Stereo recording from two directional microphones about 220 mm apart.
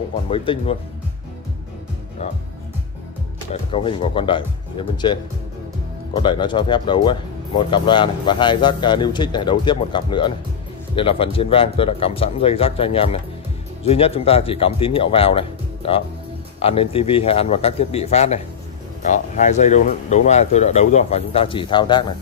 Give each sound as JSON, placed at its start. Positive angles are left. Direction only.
{"t": 0.3, "sound": "speech", "side_deg": 25}
{"t": 3.7, "sound": "speech", "side_deg": 25}